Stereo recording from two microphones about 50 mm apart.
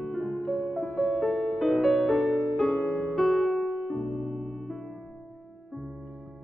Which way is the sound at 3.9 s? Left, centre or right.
Centre.